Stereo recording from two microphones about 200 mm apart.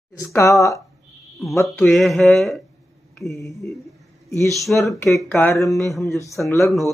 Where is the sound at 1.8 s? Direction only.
Centre (ahead or behind).